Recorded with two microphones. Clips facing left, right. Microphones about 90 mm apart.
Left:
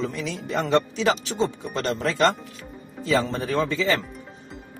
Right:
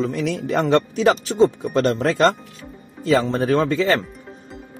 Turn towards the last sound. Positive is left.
turn(degrees=-50)  # may be behind; listen again after turning